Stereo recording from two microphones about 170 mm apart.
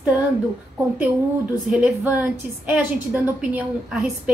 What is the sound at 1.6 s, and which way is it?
A woman's voice, 5° right (ahead or behind).